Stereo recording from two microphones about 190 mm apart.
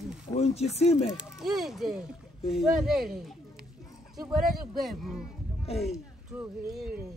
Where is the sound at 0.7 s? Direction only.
35° left (ahead or behind).